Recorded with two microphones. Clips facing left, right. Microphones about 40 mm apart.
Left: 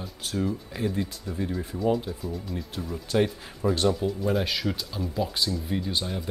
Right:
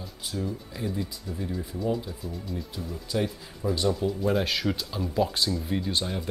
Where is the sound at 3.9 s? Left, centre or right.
Centre.